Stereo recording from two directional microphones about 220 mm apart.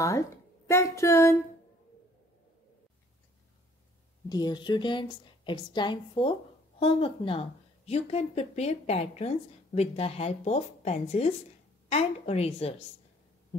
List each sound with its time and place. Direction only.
0.7 s speech: 15° left (ahead or behind)
4.3 s speech: 20° left (ahead or behind)